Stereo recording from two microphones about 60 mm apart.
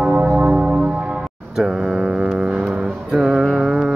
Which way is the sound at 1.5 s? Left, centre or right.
Centre.